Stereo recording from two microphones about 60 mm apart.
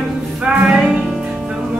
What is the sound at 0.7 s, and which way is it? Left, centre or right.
Music, centre.